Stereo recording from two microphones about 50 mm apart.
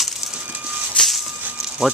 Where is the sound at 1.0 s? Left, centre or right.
Left.